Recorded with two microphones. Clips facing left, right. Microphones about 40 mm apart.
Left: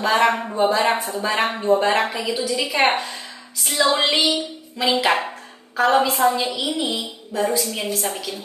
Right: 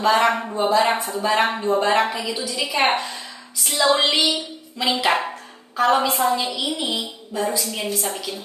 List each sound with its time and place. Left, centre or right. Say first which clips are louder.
0.0 s a woman's voice: even; centre